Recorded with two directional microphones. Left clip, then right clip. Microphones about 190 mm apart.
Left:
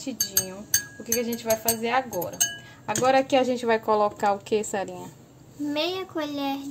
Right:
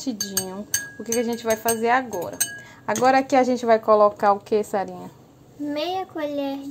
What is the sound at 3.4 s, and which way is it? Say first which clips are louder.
Speech: right 5 dB; 15° right (ahead or behind).